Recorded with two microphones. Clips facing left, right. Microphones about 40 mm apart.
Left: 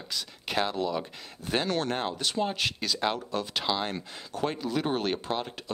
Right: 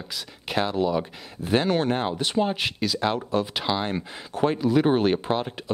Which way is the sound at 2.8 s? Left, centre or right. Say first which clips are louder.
Right 6 dB; centre.